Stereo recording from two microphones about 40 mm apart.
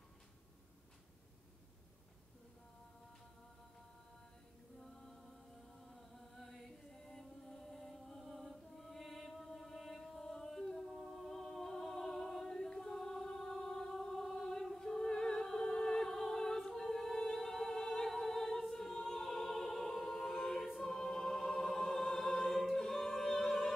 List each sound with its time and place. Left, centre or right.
4.9 s music: centre
9.8 s chant: centre
10.6 s music: centre
16.6 s humming: centre
18.9 s music: centre
20.8 s choir: centre